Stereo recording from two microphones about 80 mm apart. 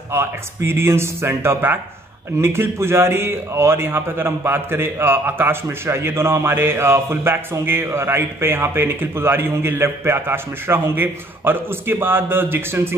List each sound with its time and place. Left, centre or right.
0.1 s a man's voice: right